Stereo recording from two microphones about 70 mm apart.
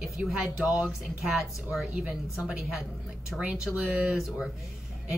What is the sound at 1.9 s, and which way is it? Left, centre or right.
Speech, centre.